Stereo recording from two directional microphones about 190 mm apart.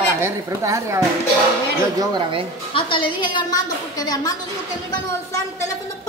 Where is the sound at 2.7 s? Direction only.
25° left (ahead or behind).